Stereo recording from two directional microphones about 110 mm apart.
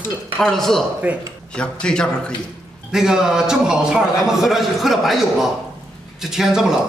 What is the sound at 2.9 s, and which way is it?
A man's voice, 5° right (ahead or behind).